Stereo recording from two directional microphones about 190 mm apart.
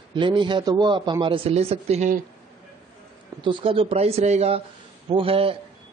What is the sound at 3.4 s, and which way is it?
Speech, 25° right (ahead or behind).